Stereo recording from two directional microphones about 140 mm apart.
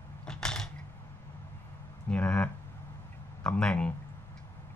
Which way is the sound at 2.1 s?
10° left (ahead or behind).